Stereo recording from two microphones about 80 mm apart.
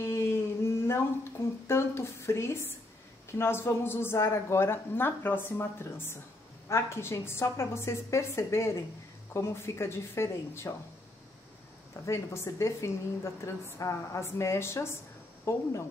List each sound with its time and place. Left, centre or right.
0.0 s a sound: left
1.7 s a woman's voice: left
12.1 s a woman's voice: left